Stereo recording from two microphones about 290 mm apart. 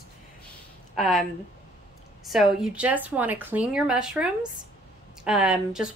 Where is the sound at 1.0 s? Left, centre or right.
Centre.